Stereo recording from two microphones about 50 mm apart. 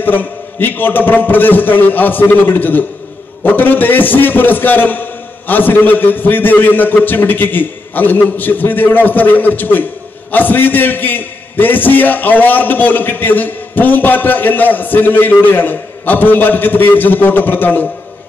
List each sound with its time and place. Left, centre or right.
0.0 s a man's voice: left